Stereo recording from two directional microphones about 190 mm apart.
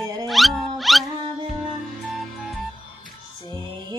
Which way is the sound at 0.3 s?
Centre (ahead or behind).